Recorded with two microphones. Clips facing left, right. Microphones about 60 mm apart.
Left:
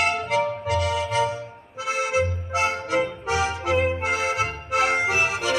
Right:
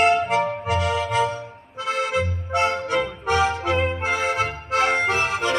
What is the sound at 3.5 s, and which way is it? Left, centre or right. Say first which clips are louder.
Accordion: even; centre.